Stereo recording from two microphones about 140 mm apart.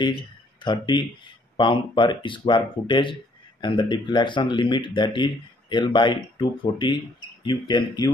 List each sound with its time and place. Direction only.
0.6 s speech: 35° left (ahead or behind)